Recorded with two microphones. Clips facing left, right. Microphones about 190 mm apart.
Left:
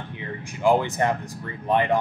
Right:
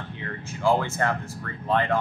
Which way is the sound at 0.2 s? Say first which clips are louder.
Left 3 dB; 15° left (ahead or behind).